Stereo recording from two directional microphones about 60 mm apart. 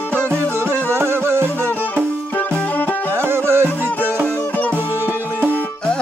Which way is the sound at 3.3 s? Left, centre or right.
Right.